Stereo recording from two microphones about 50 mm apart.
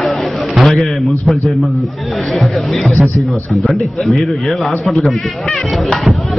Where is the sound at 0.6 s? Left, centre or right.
Centre.